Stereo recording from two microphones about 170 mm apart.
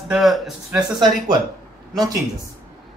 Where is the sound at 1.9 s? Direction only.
20° right (ahead or behind).